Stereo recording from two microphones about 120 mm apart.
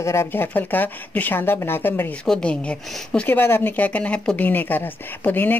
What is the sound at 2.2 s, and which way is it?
Speech, 5° left (ahead or behind).